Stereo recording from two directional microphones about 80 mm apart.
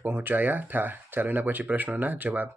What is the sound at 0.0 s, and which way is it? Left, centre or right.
Speech, right.